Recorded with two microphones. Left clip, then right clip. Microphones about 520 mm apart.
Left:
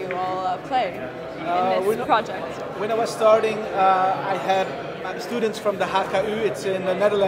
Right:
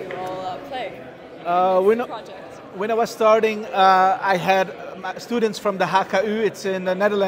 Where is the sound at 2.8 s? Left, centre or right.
Right.